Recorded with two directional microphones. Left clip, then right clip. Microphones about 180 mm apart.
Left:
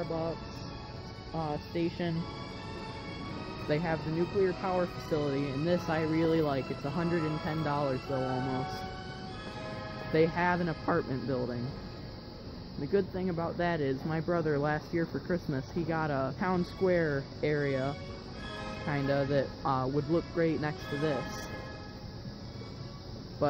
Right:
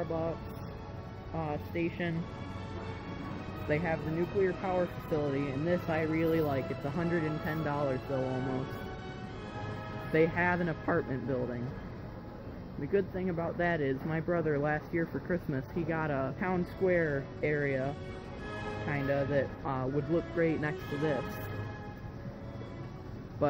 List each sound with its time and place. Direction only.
1.4 s speech: 15° left (ahead or behind)
3.7 s speech: 15° left (ahead or behind)
5.1 s speech: 15° left (ahead or behind)
6.7 s speech: centre (ahead or behind)
10.1 s speech: 10° left (ahead or behind)
12.9 s speech: 10° left (ahead or behind)